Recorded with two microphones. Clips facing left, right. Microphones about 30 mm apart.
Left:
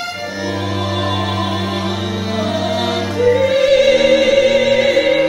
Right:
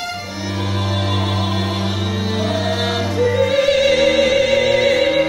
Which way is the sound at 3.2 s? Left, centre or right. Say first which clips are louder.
Left 3 dB; centre.